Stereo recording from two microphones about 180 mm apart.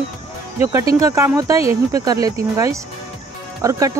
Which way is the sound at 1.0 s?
15° right (ahead or behind).